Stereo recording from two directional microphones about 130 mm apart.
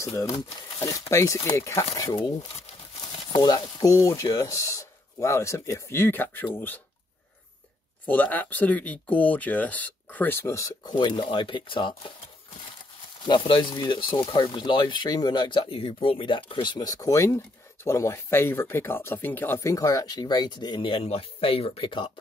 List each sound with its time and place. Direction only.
0.0 s speech: 25° left (ahead or behind)
3.3 s speech: 30° left (ahead or behind); by 6.8 s 15° left (ahead or behind)
8.0 s speech: 15° left (ahead or behind)
10.9 s speech: 35° left (ahead or behind)
13.2 s speech: 40° left (ahead or behind)